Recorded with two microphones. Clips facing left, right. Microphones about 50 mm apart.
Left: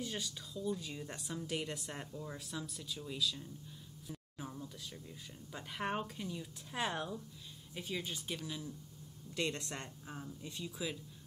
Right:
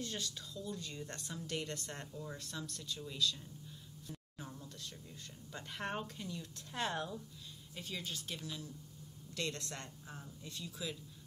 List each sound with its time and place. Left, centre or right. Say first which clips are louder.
0.0 s speech: left 1 dB; centre
4.1 s a sound: left 3 dB; centre
5.5 s speech: left 3 dB; centre